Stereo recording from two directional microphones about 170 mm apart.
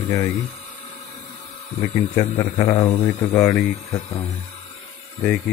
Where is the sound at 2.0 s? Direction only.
20° left (ahead or behind).